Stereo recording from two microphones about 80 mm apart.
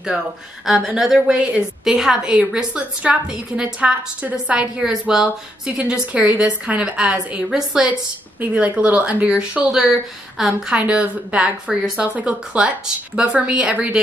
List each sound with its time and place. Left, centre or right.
0.7 s a woman's voice: centre
8.4 s a woman's voice: centre